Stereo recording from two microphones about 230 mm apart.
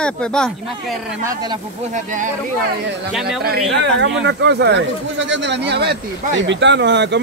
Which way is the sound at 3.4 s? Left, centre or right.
Right.